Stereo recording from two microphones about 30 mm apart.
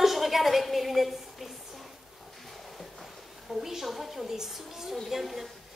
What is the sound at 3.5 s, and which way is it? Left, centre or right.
Speech, centre.